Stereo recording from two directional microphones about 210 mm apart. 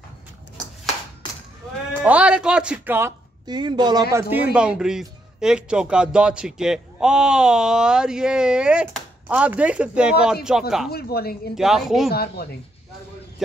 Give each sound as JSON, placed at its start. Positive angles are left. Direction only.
{"t": 2.0, "sound": "speech", "side_deg": -5}
{"t": 10.9, "sound": "speech", "side_deg": 50}
{"t": 11.5, "sound": "speech", "side_deg": 0}
{"t": 12.1, "sound": "speech", "side_deg": 45}